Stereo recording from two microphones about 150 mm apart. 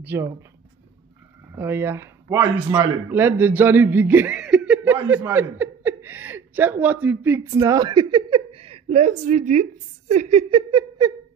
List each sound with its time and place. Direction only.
0.0 s speech: 15° right (ahead or behind)
1.6 s speech: 15° right (ahead or behind)
7.5 s a woman's voice: 25° right (ahead or behind); by 10.6 s 45° right (ahead or behind)
10.7 s a sound: 30° right (ahead or behind)